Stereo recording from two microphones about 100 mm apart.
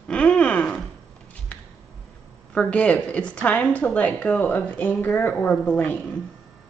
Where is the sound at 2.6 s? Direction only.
10° left (ahead or behind).